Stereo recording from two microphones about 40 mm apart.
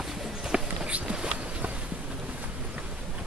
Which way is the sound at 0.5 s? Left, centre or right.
Right.